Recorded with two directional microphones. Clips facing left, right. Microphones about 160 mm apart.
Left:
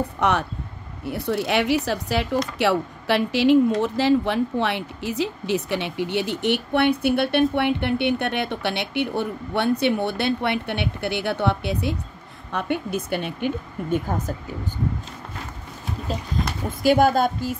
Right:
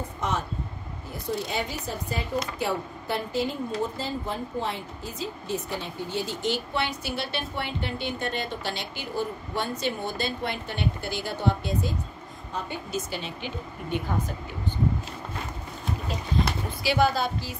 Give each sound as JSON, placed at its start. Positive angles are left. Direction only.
{"t": 0.2, "sound": "a woman's voice", "side_deg": 70}
{"t": 16.8, "sound": "speech", "side_deg": 50}